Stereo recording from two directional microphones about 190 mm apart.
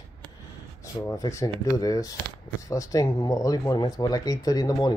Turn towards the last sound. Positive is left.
turn(degrees=20)  # may be behind; listen again after turning